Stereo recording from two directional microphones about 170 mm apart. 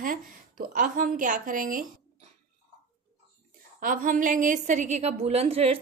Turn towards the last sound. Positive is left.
turn(degrees=-35)  # may be behind; listen again after turning